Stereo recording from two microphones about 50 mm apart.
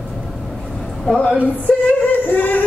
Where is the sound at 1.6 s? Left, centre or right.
Left.